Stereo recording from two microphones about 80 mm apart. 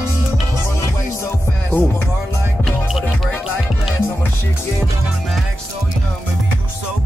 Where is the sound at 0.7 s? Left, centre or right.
Left.